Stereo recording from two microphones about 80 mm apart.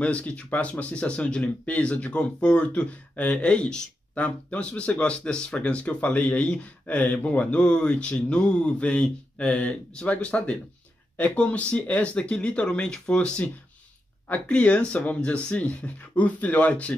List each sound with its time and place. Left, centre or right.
0.0 s speech: centre